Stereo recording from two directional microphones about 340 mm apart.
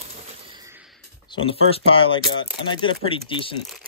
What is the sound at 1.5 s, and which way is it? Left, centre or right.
Speech, centre.